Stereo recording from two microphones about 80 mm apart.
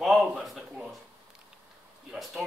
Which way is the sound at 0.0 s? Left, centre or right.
Centre.